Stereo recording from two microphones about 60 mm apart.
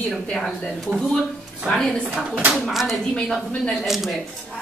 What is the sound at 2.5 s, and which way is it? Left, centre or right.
Speech, centre.